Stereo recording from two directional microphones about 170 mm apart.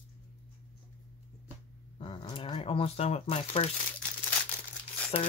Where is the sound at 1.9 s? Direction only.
30° left (ahead or behind).